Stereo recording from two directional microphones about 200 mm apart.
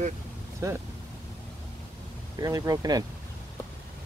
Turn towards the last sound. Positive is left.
turn(degrees=-20)  # may be behind; listen again after turning